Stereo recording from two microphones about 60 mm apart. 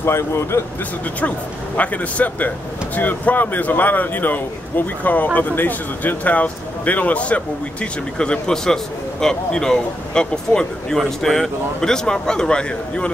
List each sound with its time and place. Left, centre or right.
0.0 s speech: left
1.8 s speech: left